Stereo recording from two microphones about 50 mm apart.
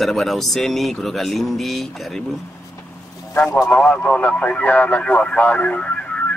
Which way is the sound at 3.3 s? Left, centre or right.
Left.